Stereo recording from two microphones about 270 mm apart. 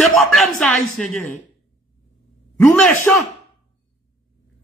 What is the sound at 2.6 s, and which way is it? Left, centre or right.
Speech, centre.